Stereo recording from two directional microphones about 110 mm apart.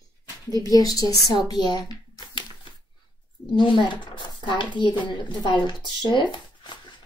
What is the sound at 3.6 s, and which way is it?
A woman's voice, 45° left (ahead or behind).